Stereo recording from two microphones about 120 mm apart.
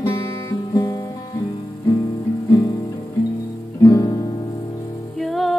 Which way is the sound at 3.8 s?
30° left (ahead or behind).